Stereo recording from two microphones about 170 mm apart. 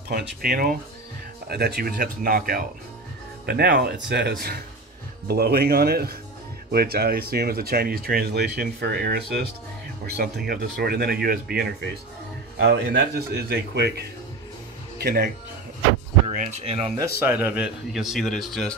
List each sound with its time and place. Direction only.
0.1 s speech: 60° right (ahead or behind)
3.4 s a man's voice: 70° right (ahead or behind)
15.0 s speech: 65° right (ahead or behind)
16.3 s speech: 40° right (ahead or behind)
17.2 s speech: 10° right (ahead or behind)